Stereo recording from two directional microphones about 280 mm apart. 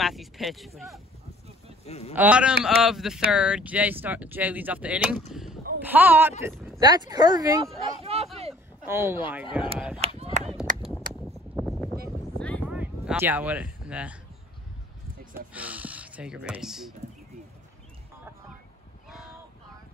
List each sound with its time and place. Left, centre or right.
0.0 s speech: centre
1.9 s speech: left
2.1 s speech: centre
5.3 s a sound: centre
6.4 s speech: centre
6.8 s speech: centre
8.8 s speech: centre
9.9 s chop: right
10.8 s a sound: centre
12.4 s a sound: centre
15.5 s speech: centre